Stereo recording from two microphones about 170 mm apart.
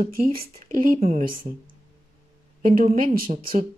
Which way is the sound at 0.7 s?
45° right (ahead or behind).